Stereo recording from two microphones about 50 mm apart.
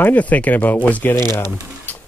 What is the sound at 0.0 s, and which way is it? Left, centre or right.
Speech, left.